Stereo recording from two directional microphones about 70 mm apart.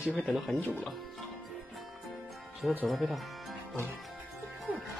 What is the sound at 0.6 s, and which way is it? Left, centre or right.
Speech, left.